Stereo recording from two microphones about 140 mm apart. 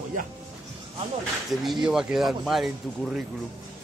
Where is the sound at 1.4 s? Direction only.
Centre (ahead or behind).